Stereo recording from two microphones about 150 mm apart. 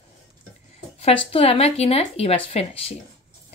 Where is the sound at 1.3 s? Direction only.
40° left (ahead or behind).